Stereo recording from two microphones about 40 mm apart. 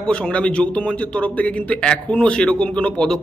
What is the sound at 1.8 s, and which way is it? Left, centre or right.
A man's voice, left.